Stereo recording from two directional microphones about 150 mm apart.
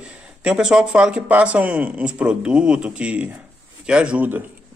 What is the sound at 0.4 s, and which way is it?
A man's voice, 5° right (ahead or behind).